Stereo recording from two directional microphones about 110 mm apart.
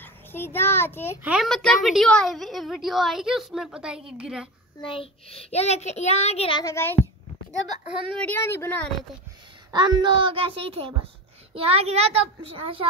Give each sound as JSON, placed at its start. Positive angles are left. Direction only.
{"t": 0.0, "sound": "a child's voice", "side_deg": 20}
{"t": 1.2, "sound": "a child's voice", "side_deg": -10}
{"t": 1.5, "sound": "a woman's voice", "side_deg": 5}
{"t": 4.8, "sound": "a child's voice", "side_deg": 55}
{"t": 6.6, "sound": "a child's voice", "side_deg": 25}
{"t": 8.2, "sound": "a woman's voice", "side_deg": 20}
{"t": 9.7, "sound": "a woman's voice", "side_deg": -40}